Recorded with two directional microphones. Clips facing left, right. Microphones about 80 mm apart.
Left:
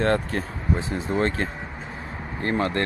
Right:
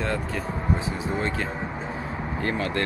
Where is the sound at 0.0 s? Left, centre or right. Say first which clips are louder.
Left 5 dB; left.